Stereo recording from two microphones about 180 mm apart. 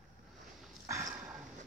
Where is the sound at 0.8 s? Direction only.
15° right (ahead or behind).